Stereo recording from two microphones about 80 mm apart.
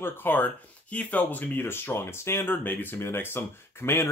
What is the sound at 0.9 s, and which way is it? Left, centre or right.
Speech, centre.